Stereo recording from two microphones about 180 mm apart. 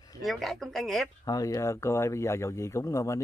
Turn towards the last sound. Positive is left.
turn(degrees=15)  # may be behind; listen again after turning